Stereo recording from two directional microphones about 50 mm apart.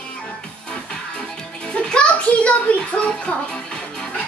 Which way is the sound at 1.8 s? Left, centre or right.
Left.